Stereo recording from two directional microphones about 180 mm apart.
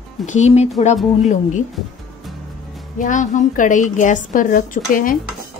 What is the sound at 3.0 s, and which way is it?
A woman's voice, 45° left (ahead or behind).